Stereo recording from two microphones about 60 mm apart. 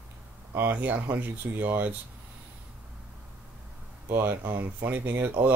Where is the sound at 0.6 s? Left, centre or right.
Right.